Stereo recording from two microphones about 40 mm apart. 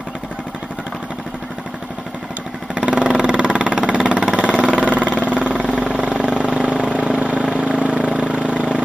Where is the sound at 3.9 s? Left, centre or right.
Right.